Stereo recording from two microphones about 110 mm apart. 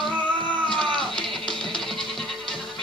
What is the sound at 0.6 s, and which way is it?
Sheep, 5° left (ahead or behind).